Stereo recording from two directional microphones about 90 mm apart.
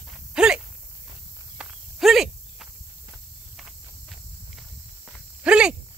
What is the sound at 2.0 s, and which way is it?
Cricket, 5° right (ahead or behind).